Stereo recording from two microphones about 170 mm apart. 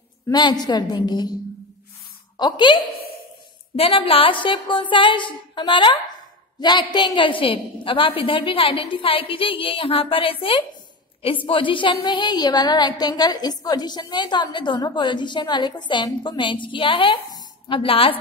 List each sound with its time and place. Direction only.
0.3 s a woman's voice: 25° left (ahead or behind)
2.3 s a woman's voice: 25° left (ahead or behind)